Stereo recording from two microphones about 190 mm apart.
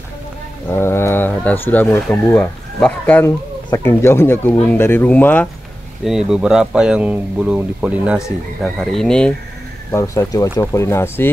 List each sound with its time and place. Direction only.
0.7 s speech: 10° left (ahead or behind)
6.0 s speech: 5° right (ahead or behind)
9.8 s speech: 15° left (ahead or behind)